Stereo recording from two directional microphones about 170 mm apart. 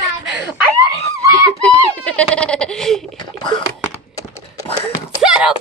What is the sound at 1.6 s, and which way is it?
Goat, 10° left (ahead or behind).